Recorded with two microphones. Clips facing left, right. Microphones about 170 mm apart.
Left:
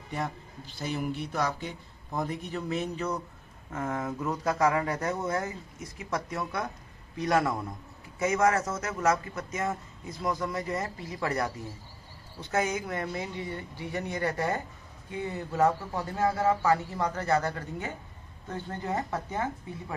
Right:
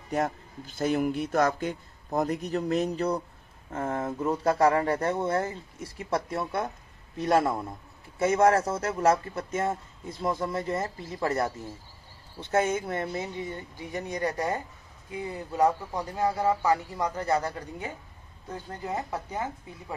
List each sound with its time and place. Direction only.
0.1 s speech: 45° right (ahead or behind); by 10.9 s 25° right (ahead or behind)
12.4 s a man's voice: 25° right (ahead or behind); by 19.5 s 10° right (ahead or behind)